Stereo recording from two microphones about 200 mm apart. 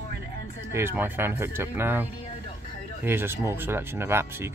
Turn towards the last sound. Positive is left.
turn(degrees=-10)  # may be behind; listen again after turning